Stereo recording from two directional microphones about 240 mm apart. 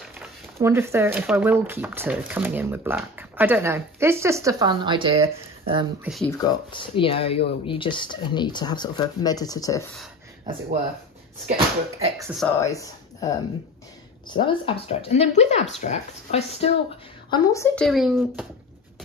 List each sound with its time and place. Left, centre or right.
0.2 s speech: centre
6.0 s speech: centre
6.4 s speech: centre
11.4 s speech: right
12.2 s speech: centre
12.5 s speech: centre
14.3 s speech: left
17.3 s a woman's voice: centre
17.8 s speech: centre